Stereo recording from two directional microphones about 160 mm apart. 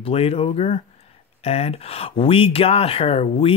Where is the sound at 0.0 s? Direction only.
35° left (ahead or behind).